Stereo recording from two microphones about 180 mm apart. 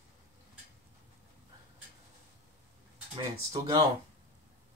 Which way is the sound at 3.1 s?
25° right (ahead or behind).